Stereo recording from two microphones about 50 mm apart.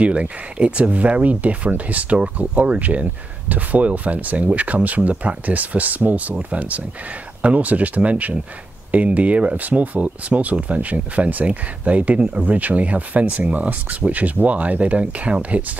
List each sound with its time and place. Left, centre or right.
0.0 s speech: right